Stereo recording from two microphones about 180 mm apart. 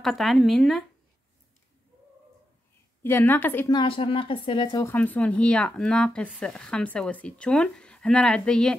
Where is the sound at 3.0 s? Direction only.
10° left (ahead or behind).